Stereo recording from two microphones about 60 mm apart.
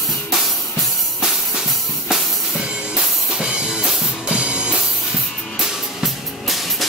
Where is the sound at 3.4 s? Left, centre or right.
Centre.